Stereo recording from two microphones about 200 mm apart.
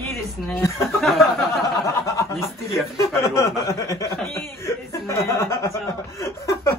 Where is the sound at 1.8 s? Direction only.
15° left (ahead or behind).